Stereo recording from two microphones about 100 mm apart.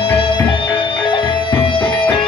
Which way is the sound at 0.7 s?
55° left (ahead or behind).